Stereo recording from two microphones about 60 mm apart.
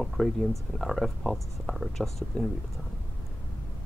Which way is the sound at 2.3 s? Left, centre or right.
Centre.